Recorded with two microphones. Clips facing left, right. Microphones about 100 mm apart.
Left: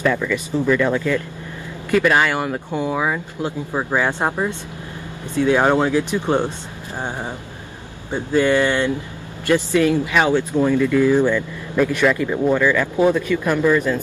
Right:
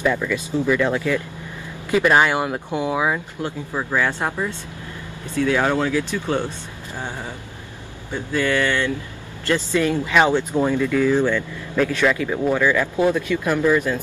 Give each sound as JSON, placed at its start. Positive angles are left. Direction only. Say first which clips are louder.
{"t": 0.0, "sound": "speech", "louder": "left 1 dB", "side_deg": -10}
{"t": 3.4, "sound": "speech", "louder": "left 4 dB", "side_deg": 20}
{"t": 10.2, "sound": "speech", "louder": "left 1 dB", "side_deg": -15}
{"t": 10.9, "sound": "speech", "louder": "left 3 dB", "side_deg": 10}
{"t": 12.5, "sound": "speech", "louder": "left 2 dB", "side_deg": -5}